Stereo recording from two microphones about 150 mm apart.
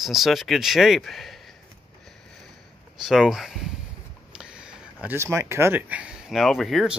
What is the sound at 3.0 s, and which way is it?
Speech, centre (ahead or behind).